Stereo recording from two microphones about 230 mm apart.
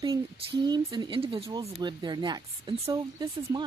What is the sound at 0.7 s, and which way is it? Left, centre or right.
Speech, centre.